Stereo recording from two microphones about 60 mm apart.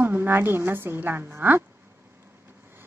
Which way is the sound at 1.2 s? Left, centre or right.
Right.